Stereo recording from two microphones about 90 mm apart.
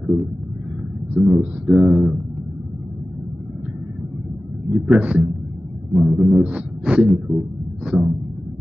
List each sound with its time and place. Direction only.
0.0 s vehicle: 5° right (ahead or behind)
1.1 s speech: 5° right (ahead or behind)
4.7 s speech: 15° right (ahead or behind)
5.9 s a sound: centre (ahead or behind)